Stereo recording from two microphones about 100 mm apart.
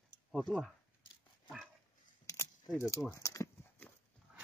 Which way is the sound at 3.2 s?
30° left (ahead or behind).